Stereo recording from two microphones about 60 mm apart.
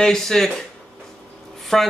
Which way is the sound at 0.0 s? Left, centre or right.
Centre.